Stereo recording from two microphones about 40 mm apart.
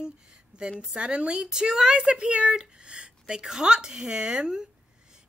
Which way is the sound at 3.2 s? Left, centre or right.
Centre.